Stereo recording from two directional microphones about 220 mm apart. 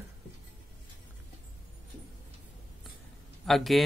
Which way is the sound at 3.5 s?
Centre (ahead or behind).